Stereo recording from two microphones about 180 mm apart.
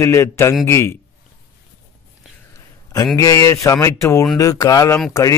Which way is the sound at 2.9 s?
20° left (ahead or behind).